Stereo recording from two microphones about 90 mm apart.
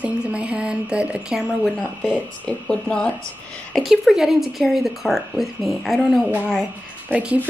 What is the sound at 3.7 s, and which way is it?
Speech, centre (ahead or behind).